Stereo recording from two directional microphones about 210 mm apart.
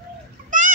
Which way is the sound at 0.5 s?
40° right (ahead or behind).